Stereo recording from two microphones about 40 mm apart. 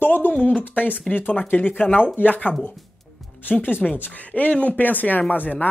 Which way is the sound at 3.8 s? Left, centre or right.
Centre.